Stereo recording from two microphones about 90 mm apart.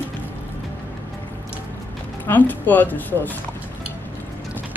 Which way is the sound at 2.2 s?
20° left (ahead or behind).